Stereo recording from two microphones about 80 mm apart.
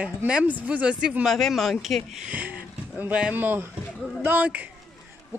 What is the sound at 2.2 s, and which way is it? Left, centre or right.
Speech, centre.